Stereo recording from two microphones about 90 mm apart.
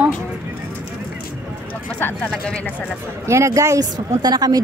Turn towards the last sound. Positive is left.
turn(degrees=-50)  # may be behind; listen again after turning